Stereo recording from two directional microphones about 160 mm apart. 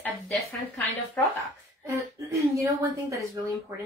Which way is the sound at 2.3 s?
20° right (ahead or behind).